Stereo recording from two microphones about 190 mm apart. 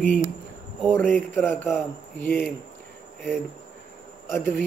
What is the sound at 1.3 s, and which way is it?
A man's voice, 10° left (ahead or behind).